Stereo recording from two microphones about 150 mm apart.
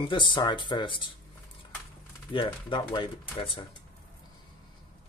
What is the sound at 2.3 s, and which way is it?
Speech, 30° left (ahead or behind).